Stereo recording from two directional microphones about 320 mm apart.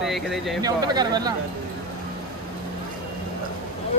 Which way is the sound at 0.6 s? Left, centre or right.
Centre.